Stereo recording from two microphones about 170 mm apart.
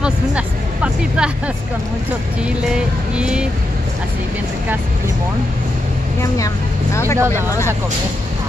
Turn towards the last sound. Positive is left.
turn(degrees=15)  # may be behind; listen again after turning